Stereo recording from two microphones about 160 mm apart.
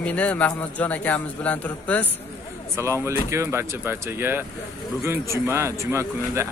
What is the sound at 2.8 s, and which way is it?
Speech, 15° right (ahead or behind).